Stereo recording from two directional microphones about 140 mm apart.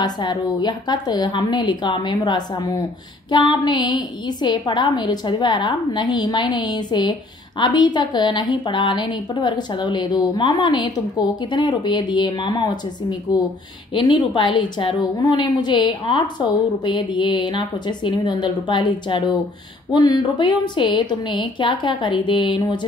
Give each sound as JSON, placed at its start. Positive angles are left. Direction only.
{"t": 0.0, "sound": "a woman's voice", "side_deg": 30}